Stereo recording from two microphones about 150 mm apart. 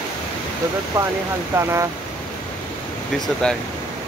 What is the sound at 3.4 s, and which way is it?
Speech, 5° left (ahead or behind).